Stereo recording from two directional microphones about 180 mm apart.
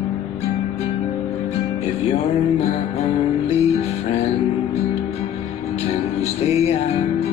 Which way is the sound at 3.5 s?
35° left (ahead or behind).